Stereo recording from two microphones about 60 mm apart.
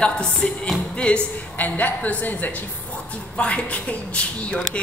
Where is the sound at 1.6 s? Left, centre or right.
Left.